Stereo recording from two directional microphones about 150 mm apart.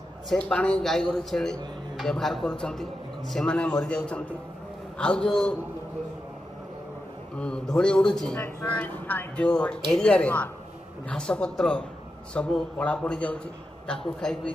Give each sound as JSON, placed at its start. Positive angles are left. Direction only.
{"t": 0.3, "sound": "a man's voice", "side_deg": 5}
{"t": 7.3, "sound": "a man's voice", "side_deg": 5}